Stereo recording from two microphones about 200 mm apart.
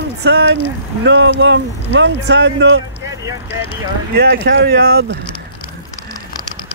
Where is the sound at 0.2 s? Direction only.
55° right (ahead or behind).